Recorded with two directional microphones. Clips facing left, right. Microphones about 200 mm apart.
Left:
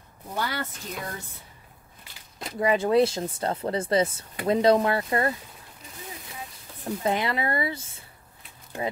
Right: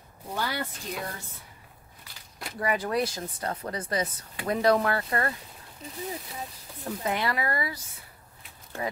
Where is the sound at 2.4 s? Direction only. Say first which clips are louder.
Left 5 dB; 20° left (ahead or behind).